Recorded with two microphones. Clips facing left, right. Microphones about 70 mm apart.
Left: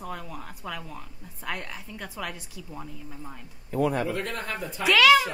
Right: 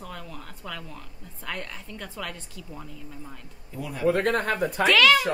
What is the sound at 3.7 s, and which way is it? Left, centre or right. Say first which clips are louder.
Speech: left 6 dB; left.